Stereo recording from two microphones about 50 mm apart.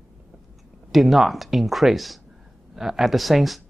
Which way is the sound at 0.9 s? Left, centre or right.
Centre.